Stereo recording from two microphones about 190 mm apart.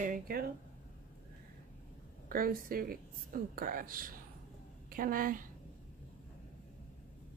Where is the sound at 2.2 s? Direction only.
50° right (ahead or behind).